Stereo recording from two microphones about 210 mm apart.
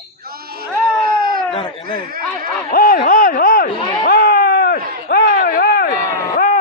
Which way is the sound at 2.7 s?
40° left (ahead or behind).